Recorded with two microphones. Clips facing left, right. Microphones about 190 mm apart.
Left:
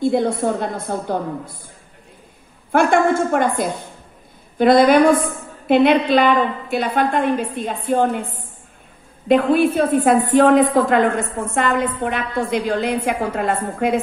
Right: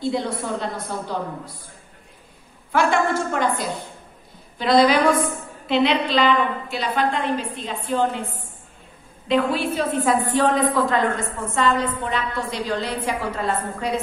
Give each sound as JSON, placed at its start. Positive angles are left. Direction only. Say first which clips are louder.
{"t": 0.0, "sound": "a woman's voice", "louder": "left 7 dB", "side_deg": 50}
{"t": 2.7, "sound": "a woman's voice", "louder": "left 5 dB", "side_deg": 55}